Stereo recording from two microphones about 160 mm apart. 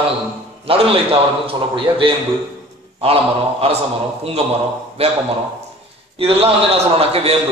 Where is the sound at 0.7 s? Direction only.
35° right (ahead or behind).